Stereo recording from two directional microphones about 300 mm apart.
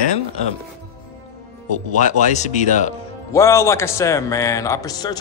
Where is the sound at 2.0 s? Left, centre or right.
Left.